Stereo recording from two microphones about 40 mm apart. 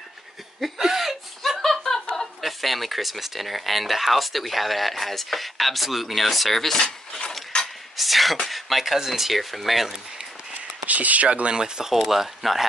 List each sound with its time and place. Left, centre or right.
0.6 s chuckle: centre
1.6 s a sound: centre
2.4 s speech: centre
10.9 s speech: right; by 11.9 s centre
11.9 s speech: centre